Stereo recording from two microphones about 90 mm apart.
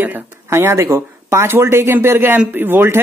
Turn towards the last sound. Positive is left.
turn(degrees=-25)  # may be behind; listen again after turning